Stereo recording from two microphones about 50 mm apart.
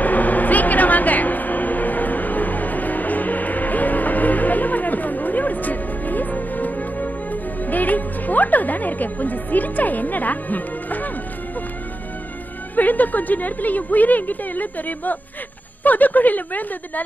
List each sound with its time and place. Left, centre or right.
0.0 s a sound: left
7.6 s music: left
12.7 s a woman's voice: left